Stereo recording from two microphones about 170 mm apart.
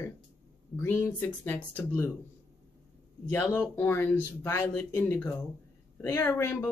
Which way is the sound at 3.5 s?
15° left (ahead or behind).